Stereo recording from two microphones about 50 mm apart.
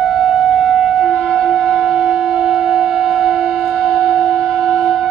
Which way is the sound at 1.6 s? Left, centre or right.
Centre.